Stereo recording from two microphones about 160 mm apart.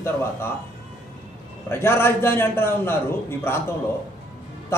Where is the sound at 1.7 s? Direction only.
15° left (ahead or behind).